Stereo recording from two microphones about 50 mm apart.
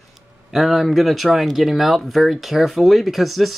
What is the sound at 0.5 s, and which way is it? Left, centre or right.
Speech, centre.